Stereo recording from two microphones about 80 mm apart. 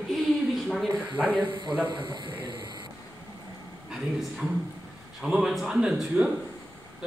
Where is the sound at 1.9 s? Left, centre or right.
Right.